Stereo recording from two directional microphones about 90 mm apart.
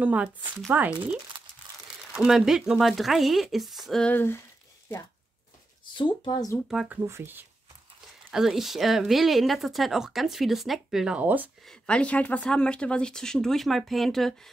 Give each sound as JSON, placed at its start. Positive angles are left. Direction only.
{"t": 0.0, "sound": "speech", "side_deg": -15}
{"t": 1.3, "sound": "crumpling", "side_deg": -65}
{"t": 2.1, "sound": "speech", "side_deg": -5}
{"t": 4.0, "sound": "speech", "side_deg": 20}
{"t": 5.9, "sound": "speech", "side_deg": 60}
{"t": 6.9, "sound": "speech", "side_deg": -30}
{"t": 8.3, "sound": "speech", "side_deg": -5}
{"t": 11.1, "sound": "speech", "side_deg": -20}
{"t": 11.6, "sound": "speech", "side_deg": 10}